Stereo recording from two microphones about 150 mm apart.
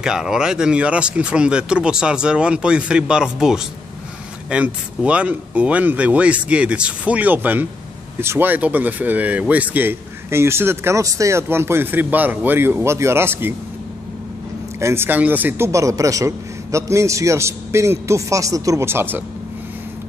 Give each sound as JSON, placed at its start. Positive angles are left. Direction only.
{"t": 0.0, "sound": "speech", "side_deg": -5}
{"t": 14.8, "sound": "a man's voice", "side_deg": -15}